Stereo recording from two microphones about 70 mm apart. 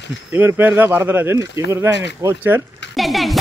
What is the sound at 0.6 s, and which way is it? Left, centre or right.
Speech, right.